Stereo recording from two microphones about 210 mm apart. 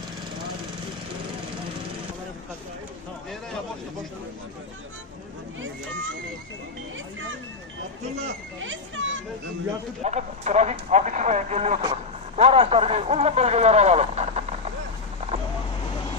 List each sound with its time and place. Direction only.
8.6 s a child's voice: 65° right (ahead or behind)
10.0 s speech: 30° right (ahead or behind)